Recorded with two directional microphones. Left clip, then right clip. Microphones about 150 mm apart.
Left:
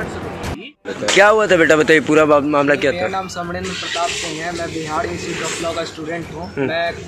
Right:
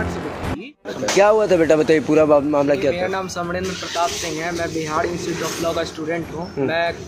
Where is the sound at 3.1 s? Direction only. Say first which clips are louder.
Left 1 dB; 35° right (ahead or behind).